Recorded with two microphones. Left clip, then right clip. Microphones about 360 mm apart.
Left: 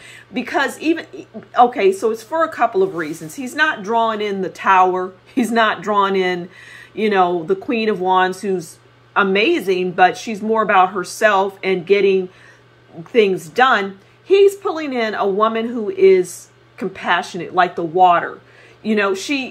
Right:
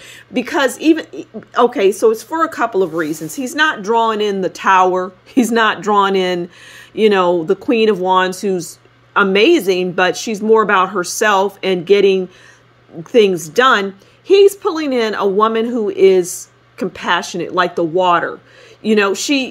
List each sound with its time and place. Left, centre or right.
0.3 s speech: right